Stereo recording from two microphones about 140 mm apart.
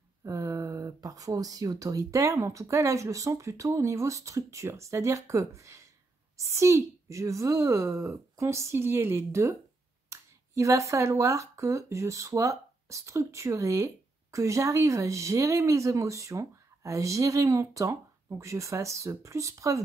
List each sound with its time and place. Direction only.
0.2 s speech: 20° right (ahead or behind)